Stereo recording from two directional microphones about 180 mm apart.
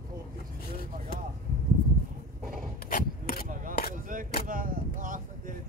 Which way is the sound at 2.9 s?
50° left (ahead or behind).